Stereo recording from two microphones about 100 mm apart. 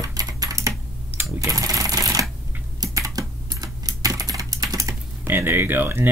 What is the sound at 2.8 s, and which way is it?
Typing, 35° right (ahead or behind).